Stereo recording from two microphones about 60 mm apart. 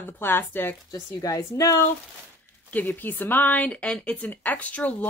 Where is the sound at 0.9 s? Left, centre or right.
Left.